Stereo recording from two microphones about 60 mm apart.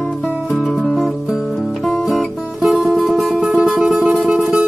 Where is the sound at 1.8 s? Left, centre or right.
Centre.